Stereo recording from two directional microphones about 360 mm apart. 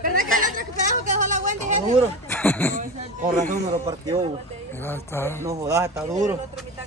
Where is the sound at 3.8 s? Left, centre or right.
Centre.